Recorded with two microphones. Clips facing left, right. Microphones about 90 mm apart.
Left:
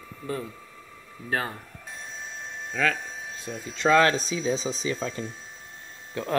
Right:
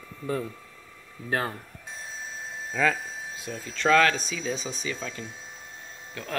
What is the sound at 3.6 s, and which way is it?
Speech, 15° left (ahead or behind).